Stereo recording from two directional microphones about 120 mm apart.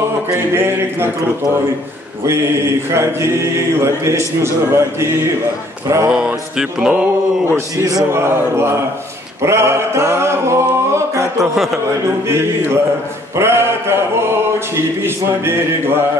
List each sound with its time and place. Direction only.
0.3 s a sound: 20° right (ahead or behind)
2.9 s speech: 20° right (ahead or behind)
6.1 s music: 5° right (ahead or behind)
7.4 s speech: 25° right (ahead or behind)
9.4 s music: 20° right (ahead or behind)
12.3 s speech: 20° right (ahead or behind)